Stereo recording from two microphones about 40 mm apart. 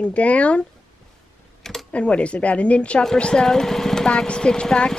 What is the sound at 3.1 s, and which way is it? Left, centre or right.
Speech, centre.